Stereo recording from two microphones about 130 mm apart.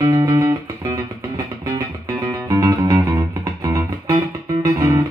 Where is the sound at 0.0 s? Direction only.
25° right (ahead or behind).